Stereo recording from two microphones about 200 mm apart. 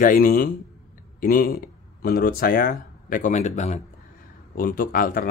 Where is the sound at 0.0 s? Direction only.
45° left (ahead or behind).